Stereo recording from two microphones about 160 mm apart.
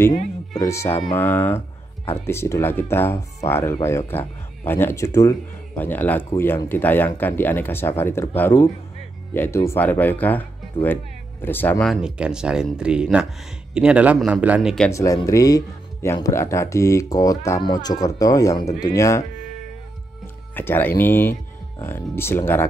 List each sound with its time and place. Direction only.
0.6 s speech: 15° left (ahead or behind)
11.9 s speech: 5° right (ahead or behind)
14.9 s speech: 20° left (ahead or behind)
20.5 s speech: 10° left (ahead or behind)